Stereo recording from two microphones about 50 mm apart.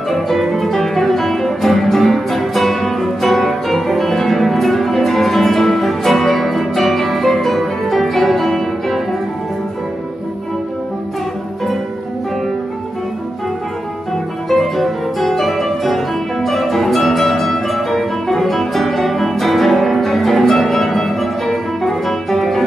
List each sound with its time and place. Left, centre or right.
0.1 s music: centre
14.5 s music: centre